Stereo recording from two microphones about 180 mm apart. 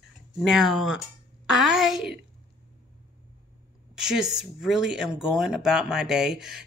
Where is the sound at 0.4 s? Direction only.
Centre (ahead or behind).